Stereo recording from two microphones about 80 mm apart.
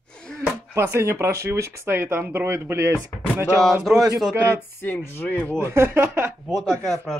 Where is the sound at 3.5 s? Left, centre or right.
Centre.